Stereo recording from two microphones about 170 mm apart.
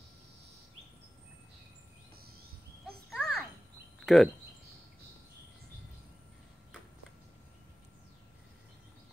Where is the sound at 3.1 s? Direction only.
Centre (ahead or behind).